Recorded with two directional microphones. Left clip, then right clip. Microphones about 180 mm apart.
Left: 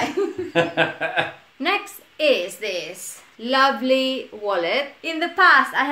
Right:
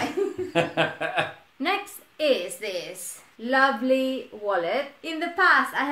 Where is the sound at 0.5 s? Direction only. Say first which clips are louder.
Left 5 dB; 20° right (ahead or behind).